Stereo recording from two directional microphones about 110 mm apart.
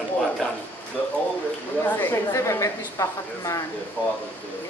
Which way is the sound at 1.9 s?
20° left (ahead or behind).